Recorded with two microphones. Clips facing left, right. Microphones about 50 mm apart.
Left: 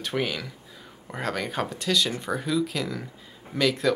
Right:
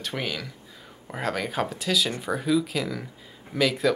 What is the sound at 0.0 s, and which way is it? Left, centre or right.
Speech, centre.